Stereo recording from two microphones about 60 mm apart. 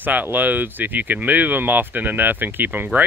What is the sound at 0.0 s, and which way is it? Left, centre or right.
Speech, right.